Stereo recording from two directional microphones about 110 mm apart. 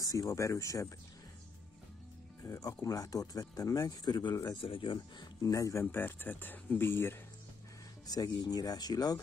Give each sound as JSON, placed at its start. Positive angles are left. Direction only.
{"t": 0.0, "sound": "speech", "side_deg": 30}
{"t": 2.4, "sound": "speech", "side_deg": 30}
{"t": 5.4, "sound": "speech", "side_deg": 30}
{"t": 8.1, "sound": "speech", "side_deg": 35}